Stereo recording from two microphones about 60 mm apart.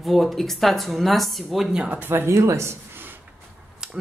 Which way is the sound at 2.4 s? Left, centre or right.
Right.